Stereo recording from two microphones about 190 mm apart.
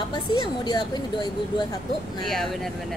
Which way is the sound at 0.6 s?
20° left (ahead or behind).